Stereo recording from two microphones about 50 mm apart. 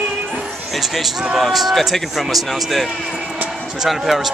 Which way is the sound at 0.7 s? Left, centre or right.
Centre.